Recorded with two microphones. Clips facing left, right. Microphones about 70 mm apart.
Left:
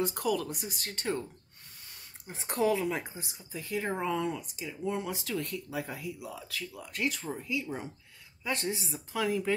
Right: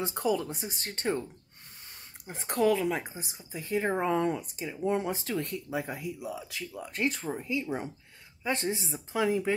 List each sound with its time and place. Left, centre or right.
0.0 s speech: right
2.5 s speech: centre
3.0 s speech: right